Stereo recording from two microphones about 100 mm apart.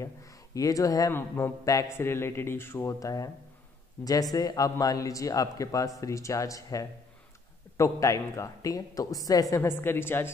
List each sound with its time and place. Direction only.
0.6 s speech: 35° left (ahead or behind)
1.1 s speech: 25° left (ahead or behind)
9.6 s speech: 25° left (ahead or behind)